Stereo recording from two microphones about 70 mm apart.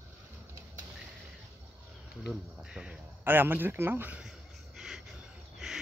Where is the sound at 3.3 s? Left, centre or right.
Right.